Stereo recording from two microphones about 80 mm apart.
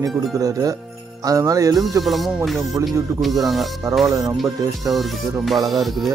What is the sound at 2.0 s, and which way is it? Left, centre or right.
Speech, centre.